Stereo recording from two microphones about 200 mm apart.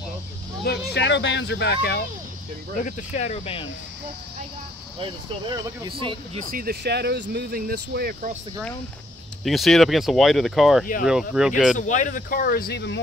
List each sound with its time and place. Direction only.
0.7 s a child's voice: 60° left (ahead or behind)
2.8 s speech: 40° left (ahead or behind)
5.0 s speech: 25° right (ahead or behind)
6.5 s speech: 50° right (ahead or behind)
9.4 s speech: centre (ahead or behind)
11.7 s speech: 40° left (ahead or behind); by 13.0 s 55° left (ahead or behind)